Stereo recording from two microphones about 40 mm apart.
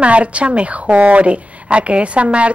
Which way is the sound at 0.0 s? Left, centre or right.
Right.